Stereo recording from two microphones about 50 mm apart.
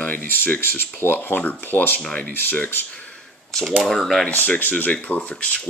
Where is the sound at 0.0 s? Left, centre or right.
Left.